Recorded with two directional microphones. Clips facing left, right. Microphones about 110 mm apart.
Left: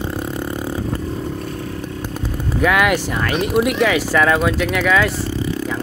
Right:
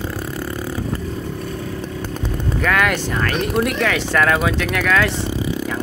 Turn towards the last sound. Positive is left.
turn(degrees=5)  # may be behind; listen again after turning